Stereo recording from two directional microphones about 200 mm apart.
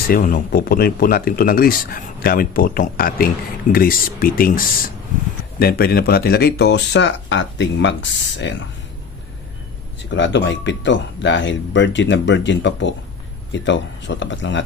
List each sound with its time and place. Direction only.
0.1 s speech: 45° left (ahead or behind); by 8.6 s 65° left (ahead or behind)
10.1 s speech: 65° left (ahead or behind)